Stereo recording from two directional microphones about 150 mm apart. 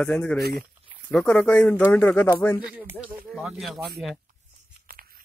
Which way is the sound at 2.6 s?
10° right (ahead or behind).